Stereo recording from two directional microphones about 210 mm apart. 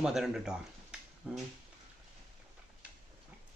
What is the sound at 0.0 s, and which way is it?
Speech, centre (ahead or behind).